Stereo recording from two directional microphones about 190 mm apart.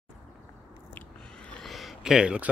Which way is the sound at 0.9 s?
5° left (ahead or behind).